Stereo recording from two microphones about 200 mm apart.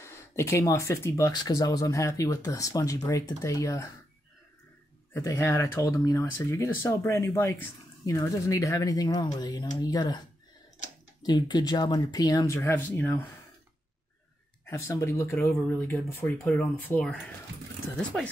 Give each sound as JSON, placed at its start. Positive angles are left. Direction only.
{"t": 0.0, "sound": "speech", "side_deg": 15}
{"t": 5.1, "sound": "speech", "side_deg": 15}
{"t": 11.2, "sound": "speech", "side_deg": 20}
{"t": 14.7, "sound": "speech", "side_deg": 15}